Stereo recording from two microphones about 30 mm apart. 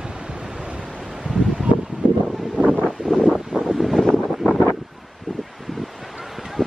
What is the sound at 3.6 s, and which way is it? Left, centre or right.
Wind noise, centre.